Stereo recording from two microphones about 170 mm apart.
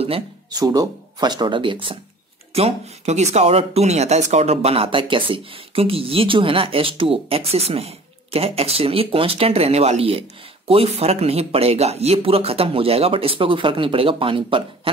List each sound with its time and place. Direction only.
0.5 s speech: 25° right (ahead or behind)